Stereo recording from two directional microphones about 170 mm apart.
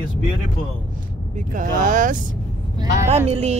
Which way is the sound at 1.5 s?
50° right (ahead or behind).